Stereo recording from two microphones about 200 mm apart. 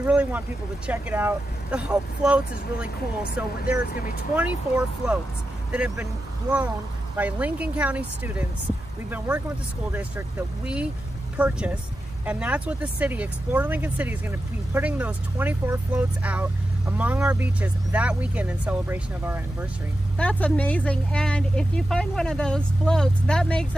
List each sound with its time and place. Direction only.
0.0 s a woman's voice: 5° right (ahead or behind)
3.8 s speech: 45° left (ahead or behind)
4.4 s a woman's voice: 5° right (ahead or behind)
7.2 s speech: 5° right (ahead or behind)
9.9 s speech: 5° right (ahead or behind)
20.2 s a woman's voice: 5° left (ahead or behind)